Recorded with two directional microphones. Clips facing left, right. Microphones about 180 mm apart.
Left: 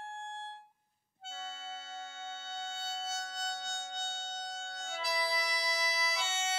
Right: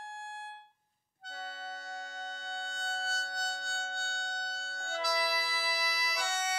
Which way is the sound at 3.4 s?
20° left (ahead or behind).